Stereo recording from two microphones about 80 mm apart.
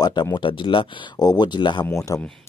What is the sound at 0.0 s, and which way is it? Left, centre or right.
Speech, left.